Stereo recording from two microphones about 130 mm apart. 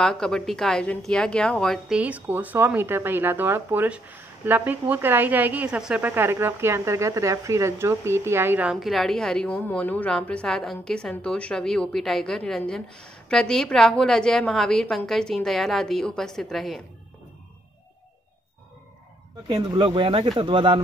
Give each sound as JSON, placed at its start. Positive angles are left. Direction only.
{"t": 0.0, "sound": "a woman's voice", "side_deg": 5}
{"t": 1.9, "sound": "speech", "side_deg": -10}
{"t": 8.6, "sound": "a woman's voice", "side_deg": 0}
{"t": 19.5, "sound": "speech", "side_deg": -35}